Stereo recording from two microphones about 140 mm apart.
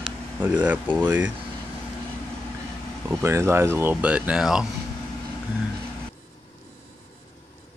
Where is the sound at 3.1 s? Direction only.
20° right (ahead or behind); by 4.7 s 5° right (ahead or behind).